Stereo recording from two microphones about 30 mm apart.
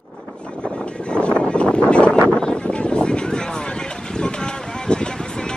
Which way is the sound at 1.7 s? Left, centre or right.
Left.